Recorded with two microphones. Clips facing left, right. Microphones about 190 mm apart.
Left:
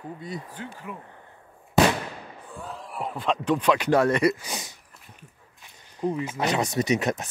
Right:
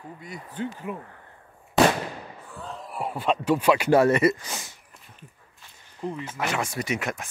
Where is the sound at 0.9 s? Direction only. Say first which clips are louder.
Right 5 dB; 20° right (ahead or behind).